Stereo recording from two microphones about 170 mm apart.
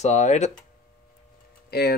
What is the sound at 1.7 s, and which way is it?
Speech, 70° left (ahead or behind).